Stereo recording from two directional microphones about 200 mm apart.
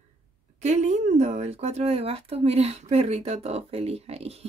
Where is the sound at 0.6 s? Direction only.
35° right (ahead or behind).